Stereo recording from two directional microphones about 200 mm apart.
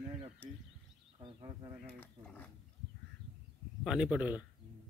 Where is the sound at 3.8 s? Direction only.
5° right (ahead or behind).